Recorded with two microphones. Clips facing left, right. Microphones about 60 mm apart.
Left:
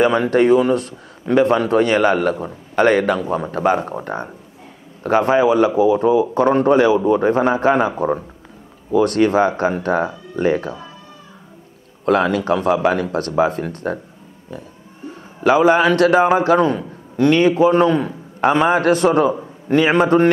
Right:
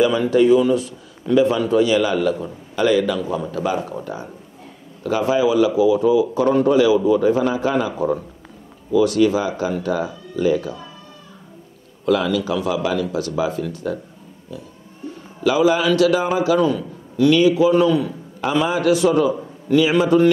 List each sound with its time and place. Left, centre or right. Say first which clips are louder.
0.0 s a man's voice: left 1 dB; left
8.9 s a man's voice: left 1 dB; left
12.0 s a man's voice: left 2 dB; left